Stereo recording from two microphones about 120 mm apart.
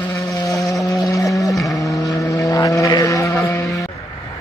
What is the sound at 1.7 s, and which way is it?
Vehicle, 30° left (ahead or behind).